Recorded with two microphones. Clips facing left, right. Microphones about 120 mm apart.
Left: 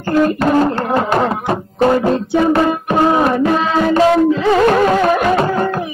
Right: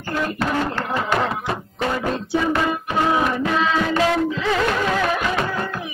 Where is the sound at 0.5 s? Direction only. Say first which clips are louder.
Left 9 dB; 45° left (ahead or behind).